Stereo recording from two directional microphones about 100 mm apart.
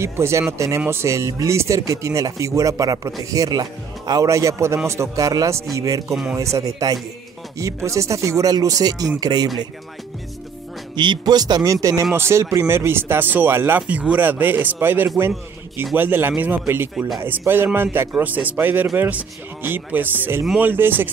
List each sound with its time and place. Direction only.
0.0 s speech: 25° right (ahead or behind); by 9.5 s 45° right (ahead or behind)
11.0 s a man's voice: 45° right (ahead or behind); by 21.1 s 20° right (ahead or behind)